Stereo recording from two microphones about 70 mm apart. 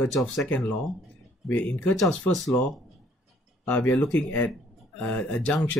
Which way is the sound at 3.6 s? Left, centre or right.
Left.